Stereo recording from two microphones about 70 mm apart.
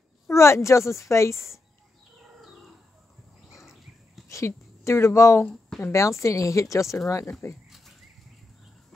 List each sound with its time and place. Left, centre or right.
0.3 s a woman's voice: left
3.6 s a sound: centre
4.3 s a woman's voice: left